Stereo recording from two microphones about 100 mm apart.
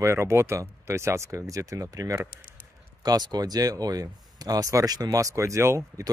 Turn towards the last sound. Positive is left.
turn(degrees=-30)  # may be behind; listen again after turning